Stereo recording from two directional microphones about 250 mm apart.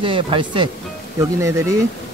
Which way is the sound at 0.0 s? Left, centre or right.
Centre.